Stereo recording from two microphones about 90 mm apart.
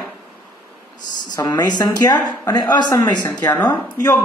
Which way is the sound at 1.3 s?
50° left (ahead or behind).